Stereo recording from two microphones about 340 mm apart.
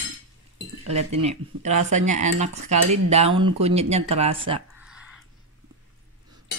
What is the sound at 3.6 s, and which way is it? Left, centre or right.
Cutlery, centre.